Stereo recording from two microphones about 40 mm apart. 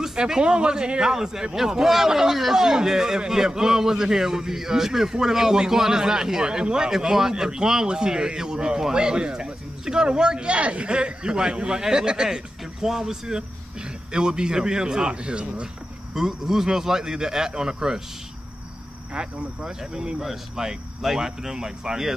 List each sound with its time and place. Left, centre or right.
0.0 s a man's voice: centre
16.2 s a man's voice: centre
19.1 s a man's voice: centre